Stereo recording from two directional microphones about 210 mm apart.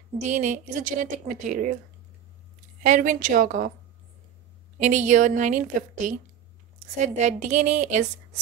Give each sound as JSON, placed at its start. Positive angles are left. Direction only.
{"t": 0.3, "sound": "a woman's voice", "side_deg": -35}
{"t": 2.8, "sound": "a woman's voice", "side_deg": -40}
{"t": 4.8, "sound": "a woman's voice", "side_deg": -35}